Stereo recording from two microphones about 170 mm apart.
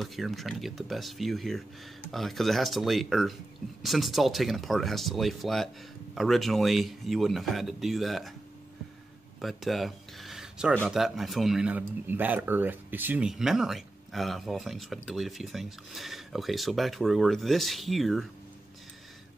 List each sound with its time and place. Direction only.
0.0 s speech: centre (ahead or behind)
9.4 s speech: centre (ahead or behind)